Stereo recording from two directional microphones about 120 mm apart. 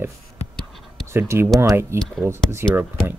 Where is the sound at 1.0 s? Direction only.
20° right (ahead or behind).